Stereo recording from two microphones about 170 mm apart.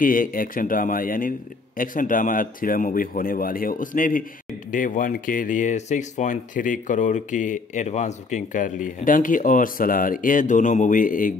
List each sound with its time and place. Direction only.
0.0 s a man's voice: 55° left (ahead or behind)